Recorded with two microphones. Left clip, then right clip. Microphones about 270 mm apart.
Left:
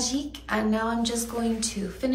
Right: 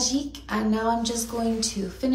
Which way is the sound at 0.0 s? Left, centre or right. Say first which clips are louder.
Right 3 dB; centre.